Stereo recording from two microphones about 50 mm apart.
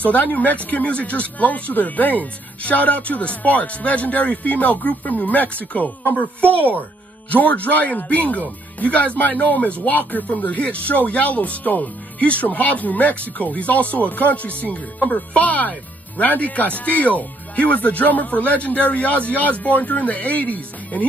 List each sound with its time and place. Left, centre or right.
0.0 s speech: left